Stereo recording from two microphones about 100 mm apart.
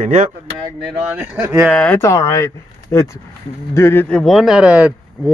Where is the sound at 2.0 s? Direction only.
30° left (ahead or behind).